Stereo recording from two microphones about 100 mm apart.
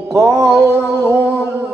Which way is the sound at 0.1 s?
30° right (ahead or behind).